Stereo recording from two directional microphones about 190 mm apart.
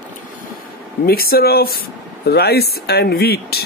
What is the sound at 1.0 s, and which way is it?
Speech, 55° left (ahead or behind).